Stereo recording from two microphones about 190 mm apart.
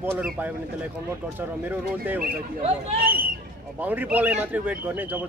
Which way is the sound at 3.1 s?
50° right (ahead or behind).